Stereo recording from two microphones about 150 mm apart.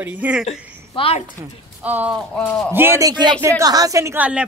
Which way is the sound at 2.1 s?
Centre (ahead or behind).